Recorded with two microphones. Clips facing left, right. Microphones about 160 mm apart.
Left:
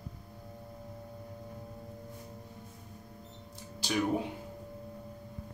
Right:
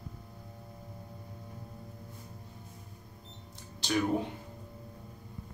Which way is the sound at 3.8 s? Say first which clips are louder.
Right 2 dB; 10° left (ahead or behind).